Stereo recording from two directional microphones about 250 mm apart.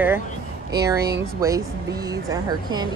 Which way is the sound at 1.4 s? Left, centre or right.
Centre.